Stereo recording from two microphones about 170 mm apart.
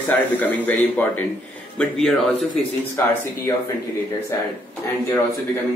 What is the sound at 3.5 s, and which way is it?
Speech, 20° left (ahead or behind).